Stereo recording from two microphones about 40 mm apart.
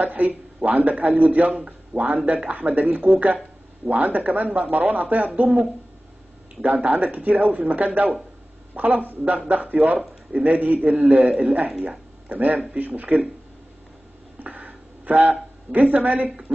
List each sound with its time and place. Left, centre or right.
0.0 s a man's voice: right
6.6 s a man's voice: right
14.4 s a sound: right
15.7 s a man's voice: right